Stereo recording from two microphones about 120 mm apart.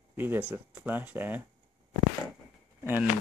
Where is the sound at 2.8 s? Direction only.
15° right (ahead or behind).